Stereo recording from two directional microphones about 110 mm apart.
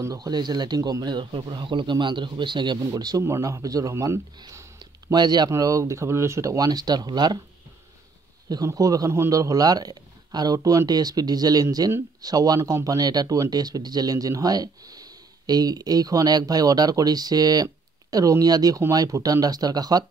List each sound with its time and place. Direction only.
0.0 s speech: 35° right (ahead or behind)
8.5 s speech: 35° right (ahead or behind)